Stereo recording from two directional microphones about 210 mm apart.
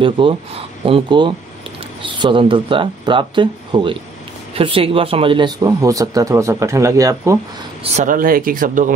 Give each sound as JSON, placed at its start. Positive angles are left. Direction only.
{"t": 0.0, "sound": "speech", "side_deg": -25}
{"t": 7.8, "sound": "speech", "side_deg": -35}